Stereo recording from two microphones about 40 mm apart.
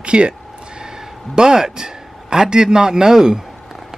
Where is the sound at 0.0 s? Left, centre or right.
Right.